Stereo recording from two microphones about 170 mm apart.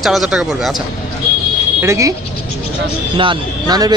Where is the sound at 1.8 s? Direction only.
15° right (ahead or behind).